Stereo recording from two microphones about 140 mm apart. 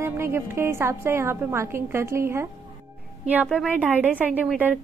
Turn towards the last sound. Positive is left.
turn(degrees=-15)  # may be behind; listen again after turning